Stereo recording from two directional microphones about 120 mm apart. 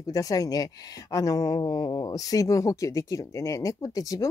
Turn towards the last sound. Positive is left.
turn(degrees=30)  # may be behind; listen again after turning